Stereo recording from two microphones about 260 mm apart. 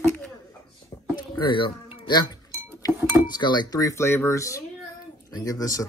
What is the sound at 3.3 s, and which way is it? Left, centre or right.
Speech, centre.